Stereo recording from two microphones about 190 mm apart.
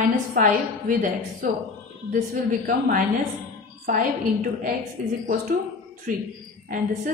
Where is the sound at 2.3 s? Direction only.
50° right (ahead or behind).